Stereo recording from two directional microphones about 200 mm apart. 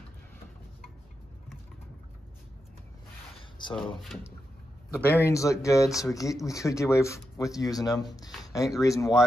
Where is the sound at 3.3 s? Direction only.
25° left (ahead or behind).